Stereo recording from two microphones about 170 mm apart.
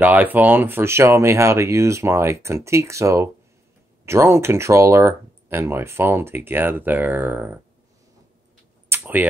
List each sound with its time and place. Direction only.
0.0 s speech: 10° right (ahead or behind)
8.9 s computer keyboard: 10° right (ahead or behind)